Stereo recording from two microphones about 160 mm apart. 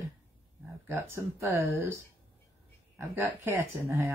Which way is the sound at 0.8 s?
15° right (ahead or behind).